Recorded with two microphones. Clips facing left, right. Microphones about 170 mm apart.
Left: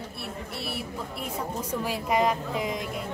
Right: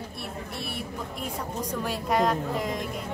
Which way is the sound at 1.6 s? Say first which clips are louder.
Right 2 dB; 10° left (ahead or behind).